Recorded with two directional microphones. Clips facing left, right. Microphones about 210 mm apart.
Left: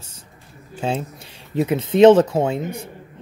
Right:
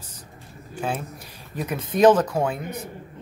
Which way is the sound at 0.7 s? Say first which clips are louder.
Left 4 dB; 25° left (ahead or behind).